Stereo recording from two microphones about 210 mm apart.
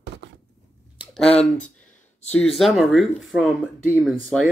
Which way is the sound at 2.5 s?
Centre (ahead or behind).